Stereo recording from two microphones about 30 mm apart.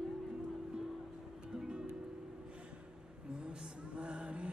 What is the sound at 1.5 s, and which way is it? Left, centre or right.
Music, right.